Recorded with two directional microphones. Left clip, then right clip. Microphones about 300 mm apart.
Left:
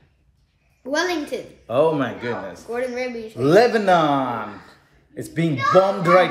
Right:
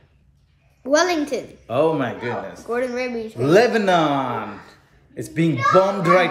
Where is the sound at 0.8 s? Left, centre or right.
Centre.